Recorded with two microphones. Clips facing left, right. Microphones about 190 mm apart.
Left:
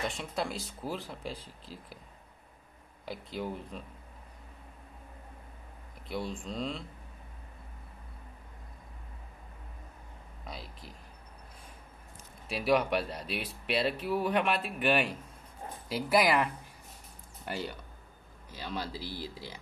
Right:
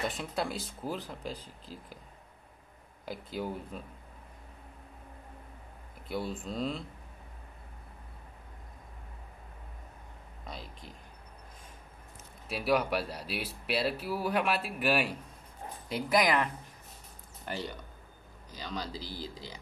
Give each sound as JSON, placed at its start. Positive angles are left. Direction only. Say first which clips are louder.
{"t": 0.0, "sound": "speech", "louder": "right 1 dB", "side_deg": 0}
{"t": 3.1, "sound": "speech", "louder": "right 1 dB", "side_deg": 0}
{"t": 6.0, "sound": "speech", "louder": "right 1 dB", "side_deg": 0}
{"t": 10.4, "sound": "speech", "louder": "even", "side_deg": 0}
{"t": 12.4, "sound": "speech", "louder": "left 1 dB", "side_deg": 0}
{"t": 15.9, "sound": "speech", "louder": "left 1 dB", "side_deg": 5}
{"t": 18.5, "sound": "speech", "louder": "left 1 dB", "side_deg": 10}